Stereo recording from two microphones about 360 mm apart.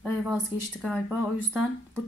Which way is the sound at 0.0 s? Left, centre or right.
Centre.